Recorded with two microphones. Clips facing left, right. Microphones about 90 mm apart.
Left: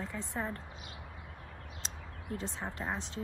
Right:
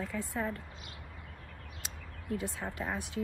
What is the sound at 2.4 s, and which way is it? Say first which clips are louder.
Speech: right 1 dB; 20° left (ahead or behind).